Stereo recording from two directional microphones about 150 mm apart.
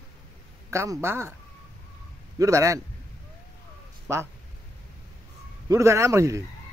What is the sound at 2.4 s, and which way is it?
Speech, 20° right (ahead or behind).